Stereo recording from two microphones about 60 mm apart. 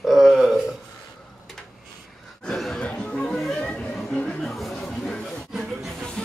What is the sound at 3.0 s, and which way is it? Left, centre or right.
Chatter, centre.